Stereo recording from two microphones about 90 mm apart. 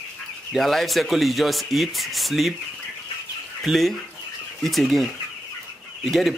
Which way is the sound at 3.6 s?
Centre (ahead or behind).